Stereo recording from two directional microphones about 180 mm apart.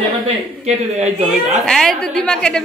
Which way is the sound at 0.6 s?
40° right (ahead or behind).